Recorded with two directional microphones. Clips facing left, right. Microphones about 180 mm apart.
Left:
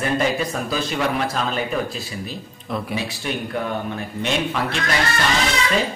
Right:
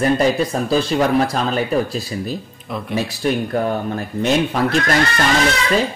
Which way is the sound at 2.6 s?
Centre (ahead or behind).